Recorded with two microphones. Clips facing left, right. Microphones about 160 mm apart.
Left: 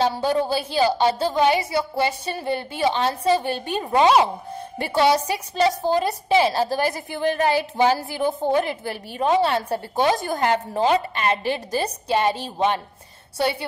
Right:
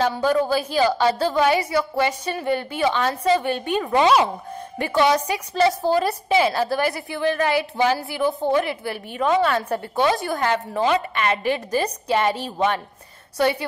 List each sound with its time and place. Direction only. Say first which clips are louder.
0.0 s a woman's voice: right 1 dB; 30° left (ahead or behind)
5.9 s a woman's voice: right 1 dB; 20° left (ahead or behind)
6.2 s a woman's voice: left 1 dB; 35° left (ahead or behind)